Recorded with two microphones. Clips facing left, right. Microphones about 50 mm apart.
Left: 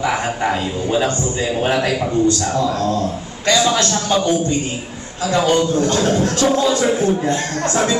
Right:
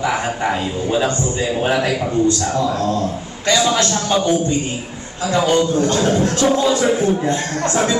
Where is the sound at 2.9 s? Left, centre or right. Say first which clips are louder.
Even; centre.